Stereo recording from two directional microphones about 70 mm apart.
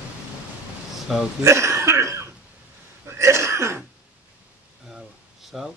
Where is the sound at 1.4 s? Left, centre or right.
Right.